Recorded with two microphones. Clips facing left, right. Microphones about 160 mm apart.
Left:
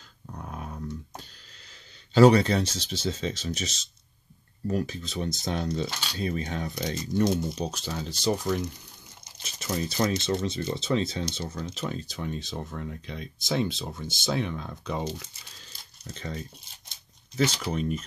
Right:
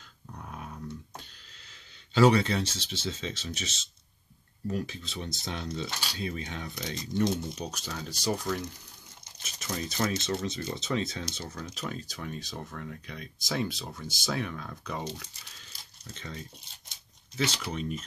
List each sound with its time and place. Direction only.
0.3 s a sound: 40° left (ahead or behind)
2.1 s speech: 40° left (ahead or behind); by 15.0 s 25° left (ahead or behind)
16.1 s speech: 40° left (ahead or behind)
17.4 s speech: 45° left (ahead or behind)